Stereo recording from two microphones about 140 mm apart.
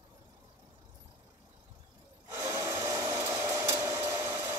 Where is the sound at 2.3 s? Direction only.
15° right (ahead or behind).